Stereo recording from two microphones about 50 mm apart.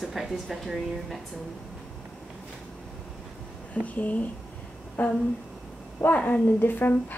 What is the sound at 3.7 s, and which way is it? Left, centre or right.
A woman's voice, left.